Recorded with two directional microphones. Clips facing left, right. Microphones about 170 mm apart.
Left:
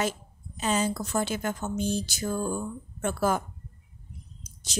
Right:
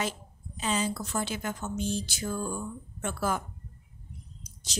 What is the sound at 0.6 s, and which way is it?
Speech, 45° left (ahead or behind).